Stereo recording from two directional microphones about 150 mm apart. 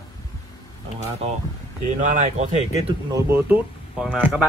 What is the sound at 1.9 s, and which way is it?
Speech, 55° right (ahead or behind).